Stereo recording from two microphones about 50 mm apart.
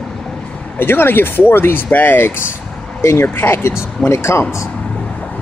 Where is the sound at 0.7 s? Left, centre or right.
Left.